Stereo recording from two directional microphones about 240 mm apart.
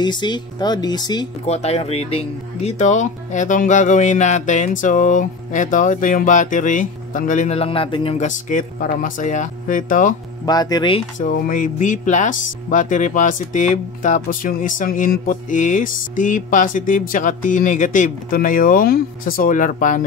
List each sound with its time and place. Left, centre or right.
0.0 s speech: centre
10.4 s speech: centre
11.2 s speech: left